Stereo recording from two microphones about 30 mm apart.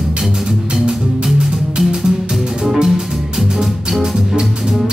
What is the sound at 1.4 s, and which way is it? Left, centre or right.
Music, centre.